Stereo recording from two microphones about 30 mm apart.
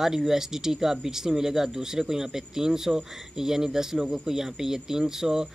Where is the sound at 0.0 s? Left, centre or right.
Centre.